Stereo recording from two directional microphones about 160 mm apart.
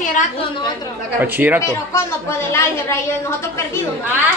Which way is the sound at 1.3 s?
10° right (ahead or behind).